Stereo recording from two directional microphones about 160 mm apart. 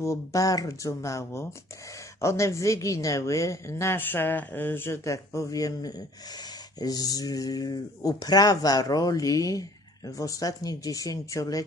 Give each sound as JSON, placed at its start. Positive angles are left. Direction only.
{"t": 0.0, "sound": "a woman's voice", "side_deg": 20}